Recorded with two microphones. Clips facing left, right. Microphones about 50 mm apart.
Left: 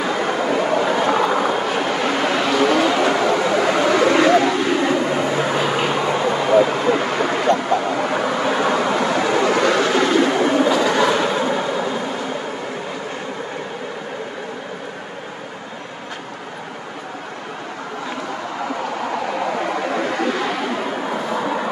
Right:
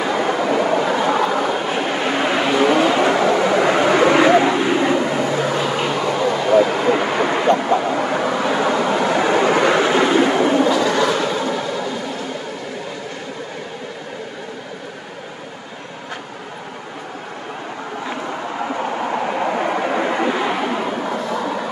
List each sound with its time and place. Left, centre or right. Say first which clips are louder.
0.0 s vehicle: right 1 dB; centre
1.7 s a sound: even; centre
5.0 s vehicle: even; centre
6.8 s a sound: right 1 dB; centre
9.1 s vehicle: right 3 dB; centre
18.8 s vehicle: right 3 dB; centre
21.0 s vehicle: even; centre